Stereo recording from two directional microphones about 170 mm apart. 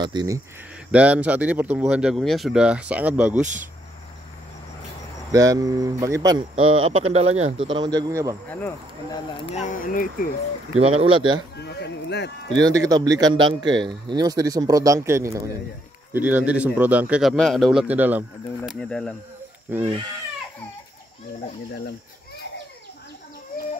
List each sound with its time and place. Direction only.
0.0 s a man's voice: 25° right (ahead or behind)
0.9 s speech: 10° right (ahead or behind)
5.3 s a man's voice: 20° right (ahead or behind)
6.6 s speech: 35° right (ahead or behind)
7.6 s a man's voice: 25° right (ahead or behind)
8.5 s speech: 10° left (ahead or behind)
9.5 s speech: 45° left (ahead or behind)
10.7 s speech: 35° right (ahead or behind)
11.5 s a sound: 80° left
12.5 s a man's voice: 20° right (ahead or behind)
18.7 s cricket: 5° left (ahead or behind)